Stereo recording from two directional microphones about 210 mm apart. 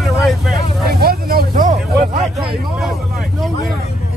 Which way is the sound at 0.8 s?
45° right (ahead or behind).